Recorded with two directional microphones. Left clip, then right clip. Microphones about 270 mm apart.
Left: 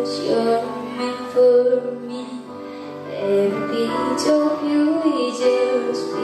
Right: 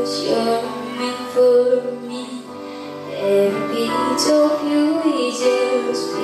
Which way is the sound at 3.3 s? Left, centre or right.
Centre.